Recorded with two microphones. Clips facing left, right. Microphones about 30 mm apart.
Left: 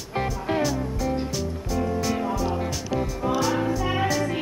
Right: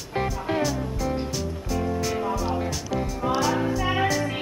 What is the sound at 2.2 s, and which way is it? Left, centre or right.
Music, centre.